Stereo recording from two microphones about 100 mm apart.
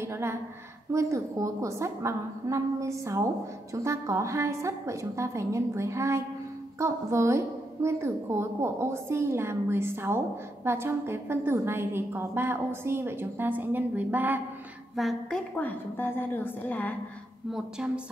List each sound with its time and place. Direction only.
0.0 s a woman's voice: 25° right (ahead or behind)
15.0 s a woman's voice: 5° left (ahead or behind)
17.5 s a woman's voice: 5° right (ahead or behind)